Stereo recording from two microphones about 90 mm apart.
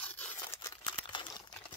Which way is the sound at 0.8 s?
60° left (ahead or behind).